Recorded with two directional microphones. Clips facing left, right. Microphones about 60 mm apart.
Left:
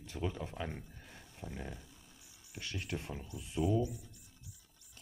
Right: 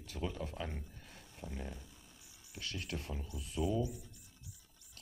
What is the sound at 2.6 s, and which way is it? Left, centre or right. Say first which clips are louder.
Speech: left 2 dB; left.